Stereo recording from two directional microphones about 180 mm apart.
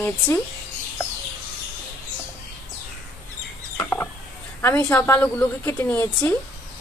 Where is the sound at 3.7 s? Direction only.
10° left (ahead or behind).